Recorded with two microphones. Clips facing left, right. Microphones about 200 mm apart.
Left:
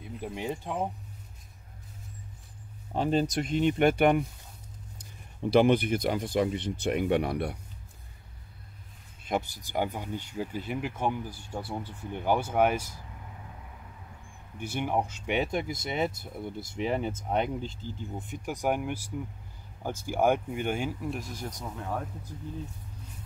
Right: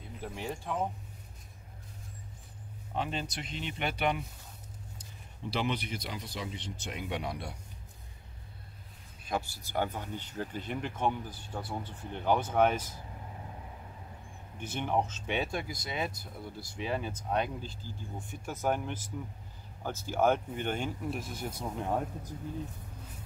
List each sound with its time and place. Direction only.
0.2 s speech: 15° left (ahead or behind)
2.9 s speech: 40° left (ahead or behind)
5.5 s speech: 55° left (ahead or behind)
9.2 s speech: 20° left (ahead or behind)
14.6 s speech: 10° left (ahead or behind); by 21.7 s 5° right (ahead or behind)
21.7 s speech: 20° right (ahead or behind)